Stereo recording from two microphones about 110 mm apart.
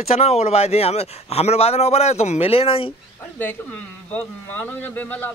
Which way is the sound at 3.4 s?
15° left (ahead or behind).